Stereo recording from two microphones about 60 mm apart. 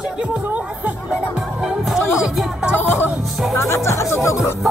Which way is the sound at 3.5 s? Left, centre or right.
Left.